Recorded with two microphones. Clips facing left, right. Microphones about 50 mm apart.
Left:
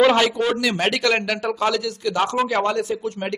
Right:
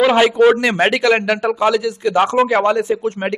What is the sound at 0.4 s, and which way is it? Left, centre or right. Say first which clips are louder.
A man's voice: right 9 dB; right.